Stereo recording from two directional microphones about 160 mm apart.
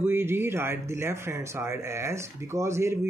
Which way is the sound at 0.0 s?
15° right (ahead or behind).